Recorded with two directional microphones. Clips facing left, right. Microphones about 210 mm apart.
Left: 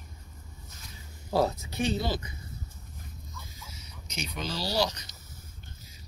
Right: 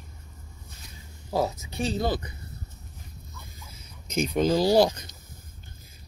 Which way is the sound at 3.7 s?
55° right (ahead or behind).